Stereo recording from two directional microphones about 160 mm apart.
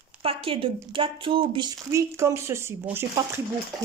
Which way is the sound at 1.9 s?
20° right (ahead or behind).